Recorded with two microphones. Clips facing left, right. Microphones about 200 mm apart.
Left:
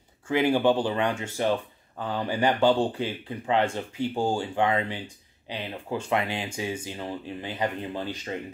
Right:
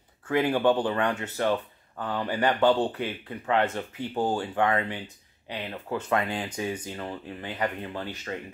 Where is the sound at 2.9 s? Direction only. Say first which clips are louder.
Left 2 dB; 25° left (ahead or behind).